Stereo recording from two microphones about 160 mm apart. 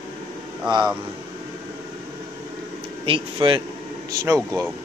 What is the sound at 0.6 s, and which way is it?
Speech, 25° right (ahead or behind).